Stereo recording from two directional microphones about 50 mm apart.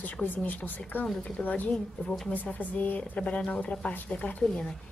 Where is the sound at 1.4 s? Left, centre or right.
Left.